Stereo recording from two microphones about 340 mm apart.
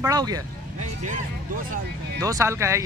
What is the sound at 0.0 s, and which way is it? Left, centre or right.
Speech, centre.